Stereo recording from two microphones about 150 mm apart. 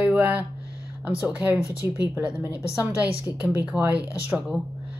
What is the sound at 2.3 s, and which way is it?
Speech, 20° left (ahead or behind).